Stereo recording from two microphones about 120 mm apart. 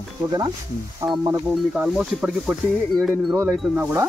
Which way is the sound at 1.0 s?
5° right (ahead or behind).